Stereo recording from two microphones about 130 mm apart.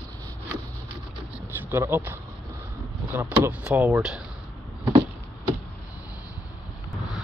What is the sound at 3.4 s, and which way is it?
Speech, 10° right (ahead or behind).